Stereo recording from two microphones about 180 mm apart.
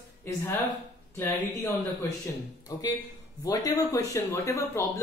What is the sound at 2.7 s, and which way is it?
Speech, 20° left (ahead or behind).